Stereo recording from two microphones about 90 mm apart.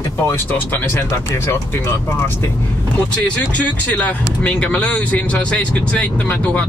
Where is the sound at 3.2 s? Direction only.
15° left (ahead or behind).